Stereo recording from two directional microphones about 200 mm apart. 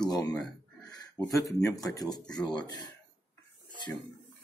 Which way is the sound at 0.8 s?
20° left (ahead or behind).